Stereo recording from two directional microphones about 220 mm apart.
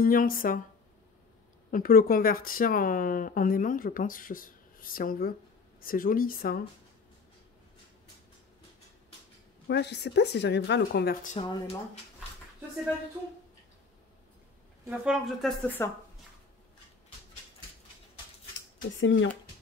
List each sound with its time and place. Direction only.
0.0 s speech: 40° left (ahead or behind)
1.7 s speech: 40° left (ahead or behind)
9.7 s speech: 50° left (ahead or behind)
11.4 s speech: 20° left (ahead or behind)
14.9 s speech: centre (ahead or behind)
18.9 s speech: 60° left (ahead or behind)